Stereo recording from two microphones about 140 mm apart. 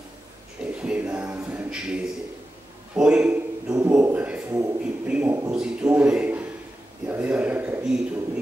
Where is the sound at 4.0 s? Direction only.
10° right (ahead or behind).